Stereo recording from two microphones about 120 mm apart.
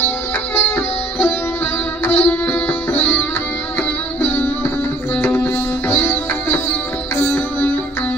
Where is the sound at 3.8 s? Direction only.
15° left (ahead or behind).